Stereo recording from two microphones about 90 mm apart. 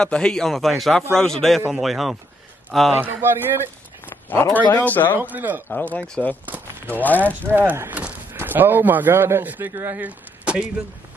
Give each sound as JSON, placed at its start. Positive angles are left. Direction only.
{"t": 0.0, "sound": "a man's voice", "side_deg": 10}
{"t": 3.0, "sound": "speech", "side_deg": -25}
{"t": 4.1, "sound": "speech", "side_deg": 25}
{"t": 5.2, "sound": "speech", "side_deg": -20}
{"t": 5.7, "sound": "speech", "side_deg": 20}
{"t": 7.5, "sound": "speech", "side_deg": -25}